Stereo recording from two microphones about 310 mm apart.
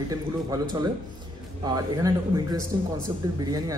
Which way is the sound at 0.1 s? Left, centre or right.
Centre.